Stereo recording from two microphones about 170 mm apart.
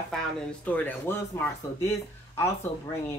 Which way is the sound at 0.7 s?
10° left (ahead or behind).